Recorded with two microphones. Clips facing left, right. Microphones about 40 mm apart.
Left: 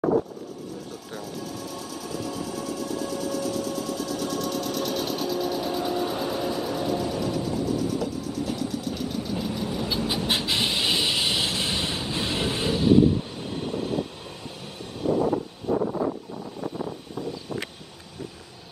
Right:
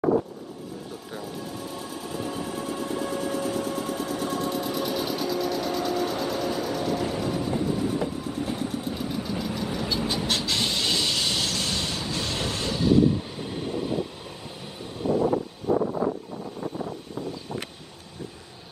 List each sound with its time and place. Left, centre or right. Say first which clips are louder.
1.1 s train: left 1 dB; right
4.9 s vehicle: even; centre
7.0 s vehicle: even; right
8.9 s vehicle: even; centre
10.0 s vehicle: left 1 dB; centre
13.5 s train: even; centre